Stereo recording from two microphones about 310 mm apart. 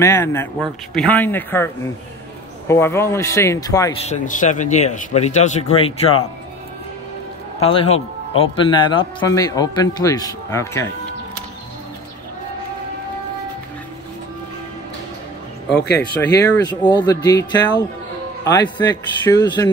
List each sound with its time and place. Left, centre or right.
0.0 s a man's voice: centre
2.7 s a man's voice: centre
4.1 s speech: left
7.6 s a man's voice: centre
16.0 s a man's voice: centre